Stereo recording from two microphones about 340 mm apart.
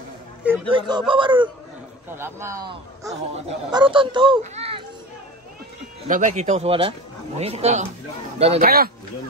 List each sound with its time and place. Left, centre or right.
0.7 s a child's voice: centre
6.0 s a man's voice: right